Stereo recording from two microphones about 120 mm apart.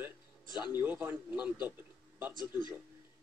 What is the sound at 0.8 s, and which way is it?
Speech, 15° right (ahead or behind).